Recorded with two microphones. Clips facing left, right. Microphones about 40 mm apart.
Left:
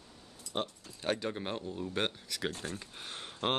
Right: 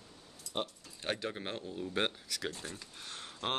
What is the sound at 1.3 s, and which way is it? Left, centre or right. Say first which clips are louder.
Speech: left 3 dB; centre.